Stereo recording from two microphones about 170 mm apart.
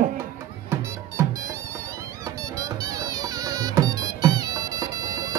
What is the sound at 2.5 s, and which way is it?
Music, 20° right (ahead or behind).